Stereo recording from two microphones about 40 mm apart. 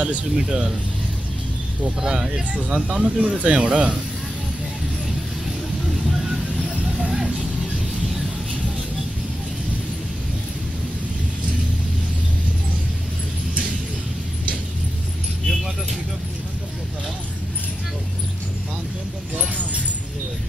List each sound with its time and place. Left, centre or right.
0.0 s speech: right
2.0 s speech: centre
2.5 s speech: right
6.2 s vehicle: centre
7.1 s music: centre